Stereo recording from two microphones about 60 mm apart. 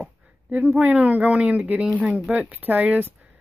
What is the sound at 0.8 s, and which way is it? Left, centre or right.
Speech, right.